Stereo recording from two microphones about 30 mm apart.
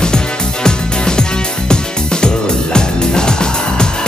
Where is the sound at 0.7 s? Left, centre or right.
Left.